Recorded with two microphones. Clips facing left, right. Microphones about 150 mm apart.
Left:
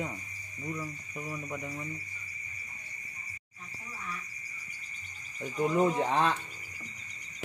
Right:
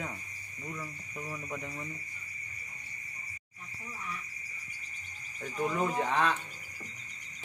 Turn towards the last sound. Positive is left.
turn(degrees=30)  # may be behind; listen again after turning